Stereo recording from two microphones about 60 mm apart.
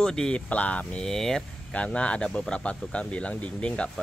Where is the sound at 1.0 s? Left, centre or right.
Centre.